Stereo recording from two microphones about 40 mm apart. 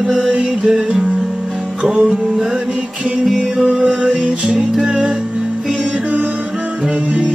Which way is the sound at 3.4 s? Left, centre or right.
Centre.